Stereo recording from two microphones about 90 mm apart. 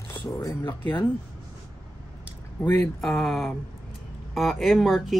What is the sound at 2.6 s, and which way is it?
Speech, 20° left (ahead or behind).